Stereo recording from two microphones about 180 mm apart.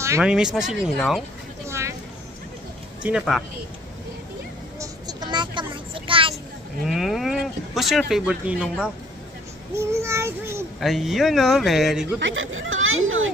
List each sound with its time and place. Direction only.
0.2 s speech: 5° right (ahead or behind)
1.7 s a sound: 15° right (ahead or behind)
3.0 s speech: 5° right (ahead or behind)
4.7 s a sound: 20° right (ahead or behind)
6.9 s speech: centre (ahead or behind)
9.8 s child singing: 15° right (ahead or behind)
10.8 s speech: centre (ahead or behind)
12.2 s speech: 90° right